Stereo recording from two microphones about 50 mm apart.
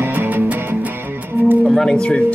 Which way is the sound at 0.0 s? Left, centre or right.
Right.